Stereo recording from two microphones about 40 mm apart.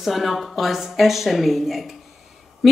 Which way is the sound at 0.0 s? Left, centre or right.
Centre.